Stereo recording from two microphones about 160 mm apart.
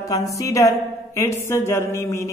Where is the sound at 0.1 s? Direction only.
20° left (ahead or behind).